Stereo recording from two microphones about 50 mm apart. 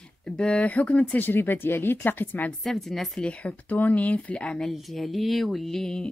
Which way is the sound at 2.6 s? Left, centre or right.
Centre.